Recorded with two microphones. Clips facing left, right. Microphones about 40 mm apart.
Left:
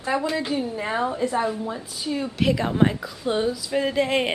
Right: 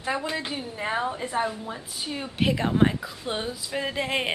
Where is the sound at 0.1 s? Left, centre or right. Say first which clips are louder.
Left 5 dB; centre.